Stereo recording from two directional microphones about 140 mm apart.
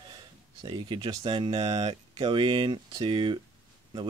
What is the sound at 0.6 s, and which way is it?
Speech, 35° right (ahead or behind).